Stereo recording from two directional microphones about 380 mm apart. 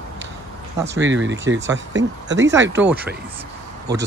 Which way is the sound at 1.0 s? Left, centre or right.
Right.